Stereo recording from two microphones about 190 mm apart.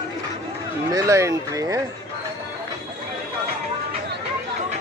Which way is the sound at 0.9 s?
15° right (ahead or behind).